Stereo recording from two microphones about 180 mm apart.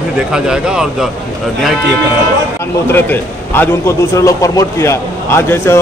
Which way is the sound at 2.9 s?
10° left (ahead or behind).